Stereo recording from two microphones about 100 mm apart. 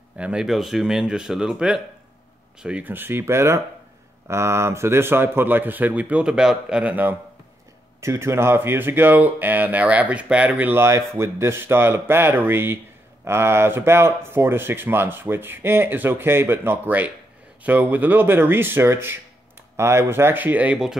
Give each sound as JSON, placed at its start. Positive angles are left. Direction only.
{"t": 0.2, "sound": "speech", "side_deg": -5}
{"t": 8.0, "sound": "speech", "side_deg": -30}